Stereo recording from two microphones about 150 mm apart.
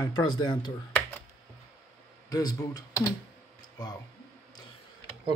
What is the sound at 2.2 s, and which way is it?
Speech, 25° left (ahead or behind).